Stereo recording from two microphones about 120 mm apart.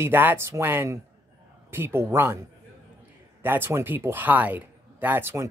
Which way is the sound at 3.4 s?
15° right (ahead or behind).